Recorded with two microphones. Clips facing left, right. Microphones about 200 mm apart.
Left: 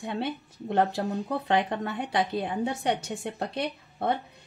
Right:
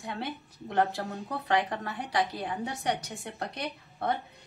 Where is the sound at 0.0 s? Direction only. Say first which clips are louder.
Left 5 dB; 20° left (ahead or behind).